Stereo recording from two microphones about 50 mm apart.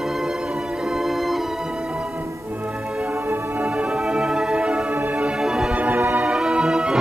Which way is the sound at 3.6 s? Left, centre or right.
Right.